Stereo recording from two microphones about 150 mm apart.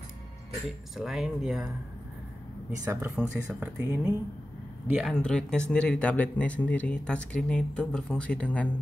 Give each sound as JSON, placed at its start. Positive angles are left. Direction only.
{"t": 0.7, "sound": "speech", "side_deg": 0}
{"t": 2.8, "sound": "speech", "side_deg": -20}
{"t": 3.2, "sound": "speech", "side_deg": -10}
{"t": 5.1, "sound": "speech", "side_deg": 5}